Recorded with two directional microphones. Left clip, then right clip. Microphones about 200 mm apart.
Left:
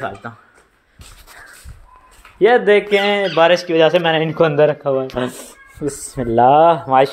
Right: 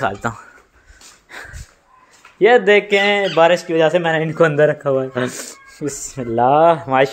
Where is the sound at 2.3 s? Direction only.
Centre (ahead or behind).